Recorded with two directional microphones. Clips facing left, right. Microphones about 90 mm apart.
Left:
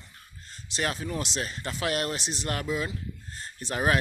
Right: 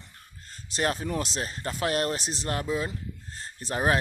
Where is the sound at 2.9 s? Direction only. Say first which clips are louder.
Even; 35° right (ahead or behind).